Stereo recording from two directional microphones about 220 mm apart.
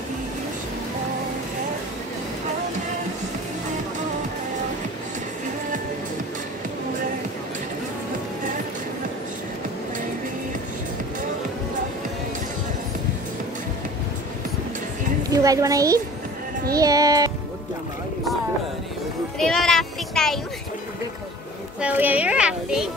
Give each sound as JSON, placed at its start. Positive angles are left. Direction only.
{"t": 15.2, "sound": "a child's voice", "side_deg": -15}
{"t": 16.7, "sound": "music", "side_deg": -15}
{"t": 19.3, "sound": "a sound", "side_deg": 0}
{"t": 21.8, "sound": "a child's voice", "side_deg": -5}